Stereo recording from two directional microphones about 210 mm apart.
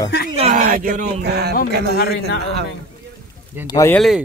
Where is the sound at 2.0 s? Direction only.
50° left (ahead or behind).